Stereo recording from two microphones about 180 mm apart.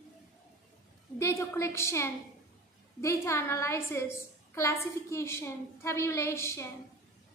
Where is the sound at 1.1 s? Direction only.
15° left (ahead or behind).